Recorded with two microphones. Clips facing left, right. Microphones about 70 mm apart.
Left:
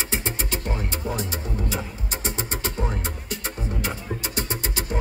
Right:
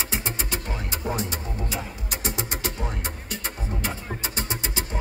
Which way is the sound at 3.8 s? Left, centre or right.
Right.